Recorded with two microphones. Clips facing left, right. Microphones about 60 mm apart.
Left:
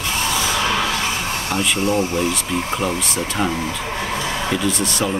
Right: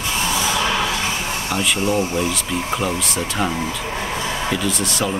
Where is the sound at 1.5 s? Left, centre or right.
Centre.